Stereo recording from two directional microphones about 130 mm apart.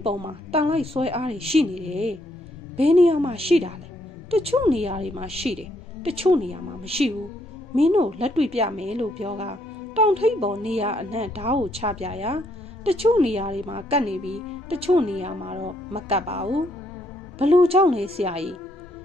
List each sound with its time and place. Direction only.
0.0 s a woman's voice: 45° right (ahead or behind)
14.1 s a woman's voice: 5° right (ahead or behind)
14.7 s a woman's voice: 50° right (ahead or behind)